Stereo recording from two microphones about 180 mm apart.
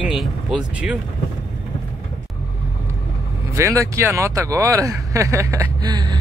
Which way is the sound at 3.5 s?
15° right (ahead or behind).